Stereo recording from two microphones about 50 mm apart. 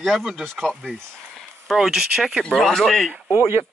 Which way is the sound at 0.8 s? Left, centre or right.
Centre.